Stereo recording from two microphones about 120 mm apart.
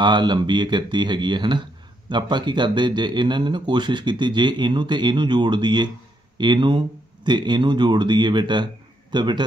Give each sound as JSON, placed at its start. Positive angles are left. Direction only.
{"t": 0.0, "sound": "speech", "side_deg": -40}